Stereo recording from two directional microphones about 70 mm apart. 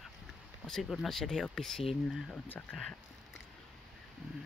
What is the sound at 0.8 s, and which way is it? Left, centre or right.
Speech, centre.